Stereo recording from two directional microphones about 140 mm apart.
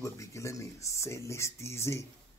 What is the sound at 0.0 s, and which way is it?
A man's voice, 20° left (ahead or behind).